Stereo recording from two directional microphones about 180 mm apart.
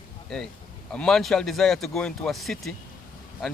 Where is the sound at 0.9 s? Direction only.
5° left (ahead or behind).